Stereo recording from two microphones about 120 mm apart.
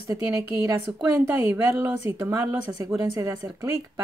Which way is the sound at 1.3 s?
20° right (ahead or behind).